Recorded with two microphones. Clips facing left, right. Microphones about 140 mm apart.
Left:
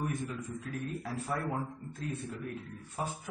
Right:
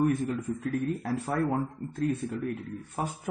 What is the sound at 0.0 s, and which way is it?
Speech, 60° right (ahead or behind).